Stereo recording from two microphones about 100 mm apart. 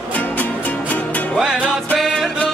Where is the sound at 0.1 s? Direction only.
15° left (ahead or behind).